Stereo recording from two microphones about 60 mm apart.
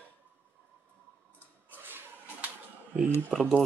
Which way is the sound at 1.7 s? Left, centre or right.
Right.